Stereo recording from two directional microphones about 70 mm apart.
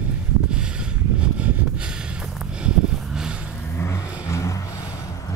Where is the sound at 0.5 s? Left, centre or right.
Centre.